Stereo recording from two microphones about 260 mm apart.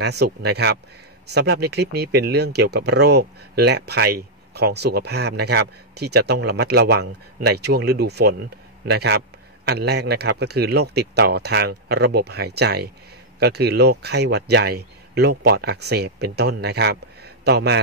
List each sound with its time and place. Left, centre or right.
0.0 s speech: right